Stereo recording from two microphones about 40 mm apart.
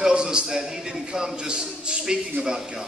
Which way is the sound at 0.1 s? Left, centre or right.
Right.